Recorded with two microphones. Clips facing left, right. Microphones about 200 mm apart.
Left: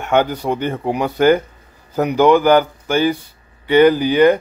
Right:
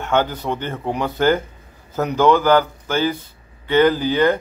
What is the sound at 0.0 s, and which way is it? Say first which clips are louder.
A man's voice: left 3 dB; 15° left (ahead or behind).